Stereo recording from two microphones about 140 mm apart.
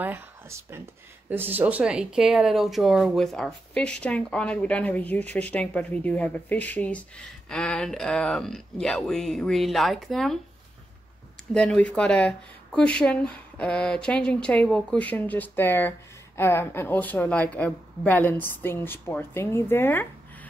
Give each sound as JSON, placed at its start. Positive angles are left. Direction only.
{"t": 0.0, "sound": "speech", "side_deg": -15}
{"t": 11.5, "sound": "speech", "side_deg": 5}